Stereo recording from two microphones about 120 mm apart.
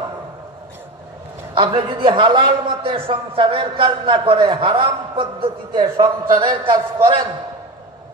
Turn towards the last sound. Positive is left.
turn(degrees=-40)  # may be behind; listen again after turning